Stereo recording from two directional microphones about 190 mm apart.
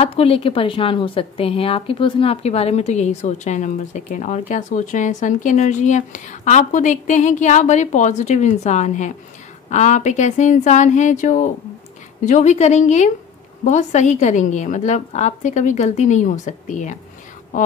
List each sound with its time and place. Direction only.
0.0 s speech: 30° left (ahead or behind)